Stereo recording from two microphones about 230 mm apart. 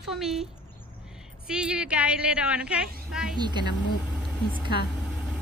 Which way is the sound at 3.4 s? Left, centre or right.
Centre.